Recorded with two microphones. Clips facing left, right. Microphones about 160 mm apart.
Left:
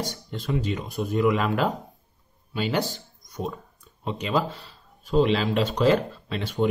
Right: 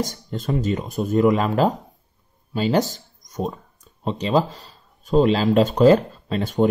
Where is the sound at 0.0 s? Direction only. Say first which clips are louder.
Right 5 dB; 40° right (ahead or behind).